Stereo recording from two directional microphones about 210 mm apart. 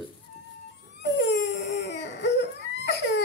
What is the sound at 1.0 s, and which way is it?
Crying, 55° left (ahead or behind).